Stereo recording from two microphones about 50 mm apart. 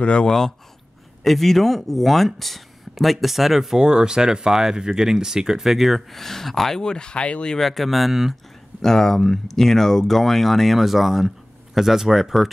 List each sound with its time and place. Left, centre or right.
0.0 s speech: left
1.2 s speech: centre
3.8 s speech: centre
6.2 s speech: centre
7.5 s speech: centre
8.8 s speech: centre